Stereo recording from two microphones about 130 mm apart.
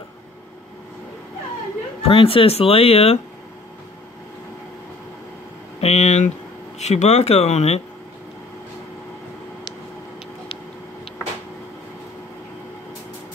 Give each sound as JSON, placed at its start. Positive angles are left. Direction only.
{"t": 2.0, "sound": "speech", "side_deg": 45}
{"t": 5.8, "sound": "speech", "side_deg": 55}